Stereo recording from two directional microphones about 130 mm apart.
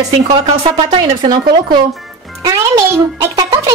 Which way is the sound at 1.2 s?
35° right (ahead or behind).